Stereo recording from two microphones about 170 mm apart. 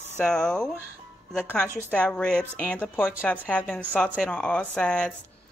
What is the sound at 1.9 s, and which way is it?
Speech, 5° left (ahead or behind).